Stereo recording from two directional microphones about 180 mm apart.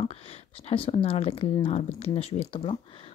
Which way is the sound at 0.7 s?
30° left (ahead or behind).